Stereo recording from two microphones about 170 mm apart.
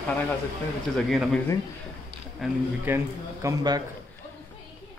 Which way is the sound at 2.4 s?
10° right (ahead or behind).